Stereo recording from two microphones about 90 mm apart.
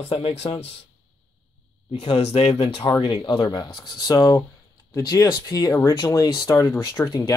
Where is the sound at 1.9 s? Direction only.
90° left.